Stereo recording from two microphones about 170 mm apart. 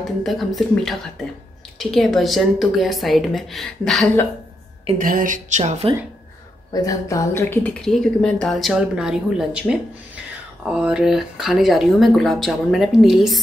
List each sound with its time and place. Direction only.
0.2 s a woman's voice: centre (ahead or behind)
4.9 s a sound: 55° right (ahead or behind)
5.6 s a woman's voice: 35° right (ahead or behind)
6.7 s a woman's voice: 20° left (ahead or behind); by 13.4 s centre (ahead or behind)